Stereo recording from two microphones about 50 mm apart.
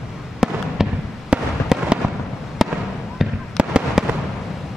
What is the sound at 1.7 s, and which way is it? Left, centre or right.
Fireworks, centre.